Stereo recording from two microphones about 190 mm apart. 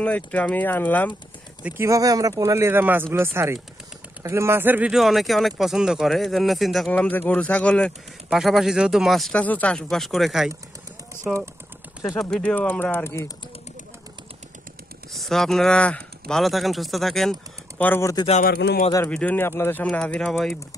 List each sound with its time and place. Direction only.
0.0 s speech: 5° left (ahead or behind)
1.6 s speech: 10° right (ahead or behind)
12.2 s speech: 5° left (ahead or behind)
15.1 s speech: centre (ahead or behind)
18.4 s speech: 60° left (ahead or behind)
19.0 s speech: 5° left (ahead or behind)